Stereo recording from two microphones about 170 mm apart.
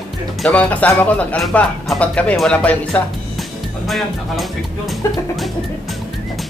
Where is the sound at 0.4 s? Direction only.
10° left (ahead or behind).